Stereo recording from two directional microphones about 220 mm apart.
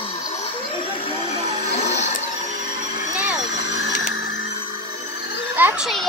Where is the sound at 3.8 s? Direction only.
60° left (ahead or behind).